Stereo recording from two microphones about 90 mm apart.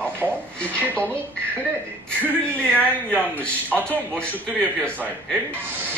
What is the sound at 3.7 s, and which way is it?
Speech, 15° left (ahead or behind).